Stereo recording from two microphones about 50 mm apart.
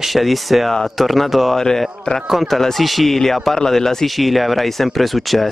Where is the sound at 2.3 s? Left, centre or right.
Centre.